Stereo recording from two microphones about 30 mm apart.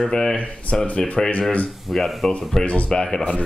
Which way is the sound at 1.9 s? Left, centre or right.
Centre.